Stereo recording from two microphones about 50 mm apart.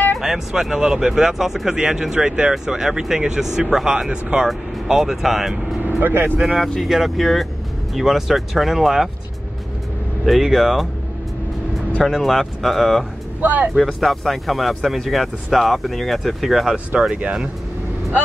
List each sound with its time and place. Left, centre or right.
0.2 s speech: centre
5.9 s speech: right
6.8 s speech: centre
10.2 s speech: centre
12.1 s speech: centre
13.4 s speech: right
13.8 s speech: centre
17.1 s speech: centre